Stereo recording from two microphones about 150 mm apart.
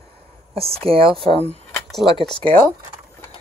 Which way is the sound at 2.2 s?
5° left (ahead or behind).